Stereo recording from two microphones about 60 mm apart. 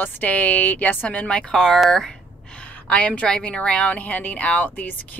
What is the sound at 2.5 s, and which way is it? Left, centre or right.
Speech, centre.